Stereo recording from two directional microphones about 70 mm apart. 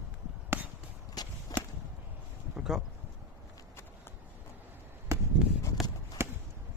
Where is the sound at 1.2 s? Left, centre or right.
Left.